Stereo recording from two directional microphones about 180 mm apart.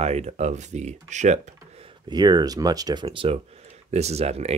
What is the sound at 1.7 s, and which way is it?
Speech, 30° right (ahead or behind).